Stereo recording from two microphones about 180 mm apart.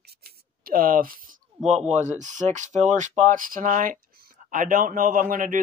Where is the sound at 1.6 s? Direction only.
40° right (ahead or behind).